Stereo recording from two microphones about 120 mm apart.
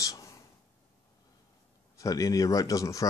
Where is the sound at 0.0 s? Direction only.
30° left (ahead or behind).